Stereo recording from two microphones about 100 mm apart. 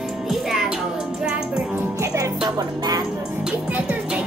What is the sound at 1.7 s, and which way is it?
Music, 30° right (ahead or behind).